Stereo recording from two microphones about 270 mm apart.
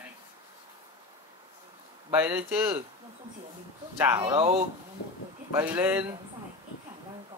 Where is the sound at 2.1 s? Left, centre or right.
Centre.